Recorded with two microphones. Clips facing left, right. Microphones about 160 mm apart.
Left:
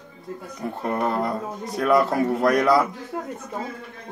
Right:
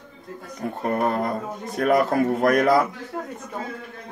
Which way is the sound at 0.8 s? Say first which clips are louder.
Right 1 dB; 50° right (ahead or behind).